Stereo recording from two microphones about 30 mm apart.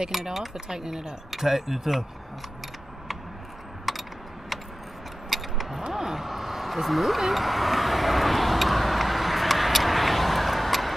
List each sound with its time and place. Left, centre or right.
0.1 s speech: centre
0.7 s speech: centre
1.3 s speech: centre
3.9 s typing: centre
5.3 s vehicle: centre